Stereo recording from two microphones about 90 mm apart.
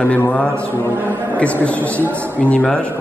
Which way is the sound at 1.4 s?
15° left (ahead or behind).